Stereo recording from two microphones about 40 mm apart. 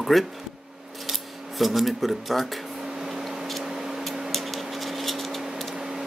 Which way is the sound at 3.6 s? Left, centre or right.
Centre.